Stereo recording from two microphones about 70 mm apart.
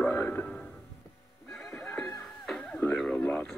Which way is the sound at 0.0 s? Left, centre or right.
Centre.